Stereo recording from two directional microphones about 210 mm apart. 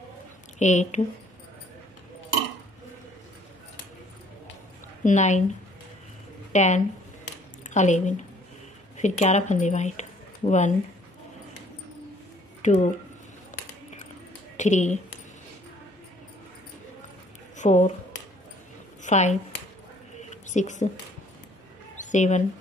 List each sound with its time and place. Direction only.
0.6 s a woman's voice: 35° left (ahead or behind)
5.0 s a woman's voice: 35° left (ahead or behind)
6.5 s a woman's voice: 35° left (ahead or behind)
12.6 s a woman's voice: 35° left (ahead or behind)
14.6 s a woman's voice: 35° left (ahead or behind)
17.6 s speech: 35° left (ahead or behind)
19.0 s speech: 35° left (ahead or behind)
20.2 s a sound: 35° left (ahead or behind)